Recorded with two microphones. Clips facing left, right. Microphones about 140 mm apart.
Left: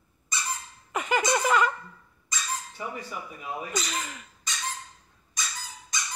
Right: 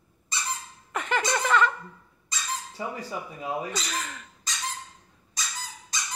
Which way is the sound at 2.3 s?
35° right (ahead or behind).